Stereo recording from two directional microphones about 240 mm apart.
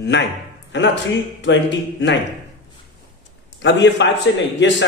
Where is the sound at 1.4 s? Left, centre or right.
Left.